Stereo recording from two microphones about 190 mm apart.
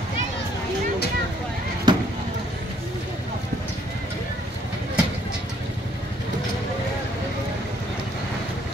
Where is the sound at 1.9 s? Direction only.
25° right (ahead or behind).